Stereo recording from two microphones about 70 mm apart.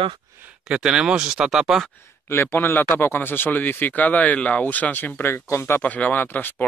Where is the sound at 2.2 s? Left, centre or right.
Left.